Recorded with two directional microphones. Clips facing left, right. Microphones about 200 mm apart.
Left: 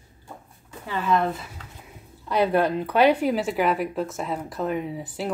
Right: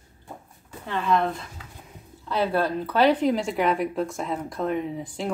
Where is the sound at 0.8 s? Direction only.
5° left (ahead or behind).